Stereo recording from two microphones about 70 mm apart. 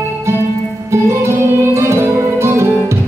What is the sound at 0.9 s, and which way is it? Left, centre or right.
Music, right.